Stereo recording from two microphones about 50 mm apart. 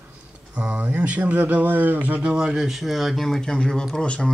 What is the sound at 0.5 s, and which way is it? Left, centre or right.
Speech, right.